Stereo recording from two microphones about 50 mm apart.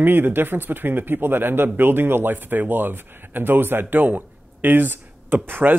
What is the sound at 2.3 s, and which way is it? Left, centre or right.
Speech, right.